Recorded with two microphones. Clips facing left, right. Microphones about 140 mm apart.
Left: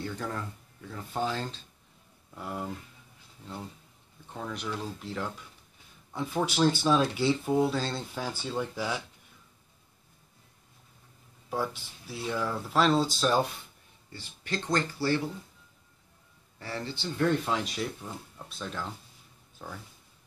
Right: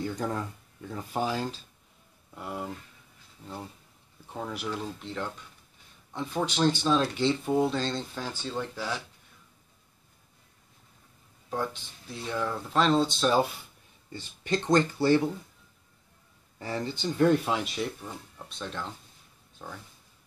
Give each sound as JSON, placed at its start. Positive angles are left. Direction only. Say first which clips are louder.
{"t": 0.0, "sound": "speech", "louder": "right 4 dB", "side_deg": -15}
{"t": 4.3, "sound": "speech", "louder": "right 2 dB", "side_deg": -10}
{"t": 4.8, "sound": "speech", "louder": "even", "side_deg": 5}
{"t": 11.5, "sound": "speech", "louder": "even", "side_deg": 5}
{"t": 14.1, "sound": "speech", "louder": "right 5 dB", "side_deg": -20}
{"t": 16.5, "sound": "speech", "louder": "right 4 dB", "side_deg": -15}
{"t": 17.7, "sound": "speech", "louder": "right 1 dB", "side_deg": 0}